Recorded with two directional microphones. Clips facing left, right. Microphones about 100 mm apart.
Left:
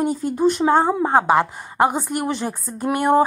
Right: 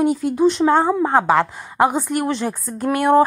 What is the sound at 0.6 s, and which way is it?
A woman's voice, 20° left (ahead or behind).